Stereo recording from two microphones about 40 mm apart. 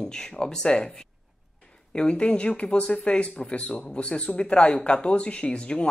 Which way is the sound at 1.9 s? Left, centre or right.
Left.